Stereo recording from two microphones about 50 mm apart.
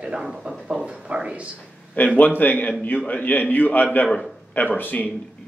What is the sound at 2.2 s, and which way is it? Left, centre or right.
A man's voice, left.